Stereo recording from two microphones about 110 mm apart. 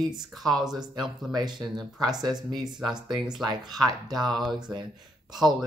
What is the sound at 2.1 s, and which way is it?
Speech, 40° right (ahead or behind).